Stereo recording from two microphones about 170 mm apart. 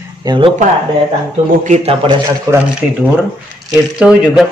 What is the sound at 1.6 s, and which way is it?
Speech, 40° right (ahead or behind).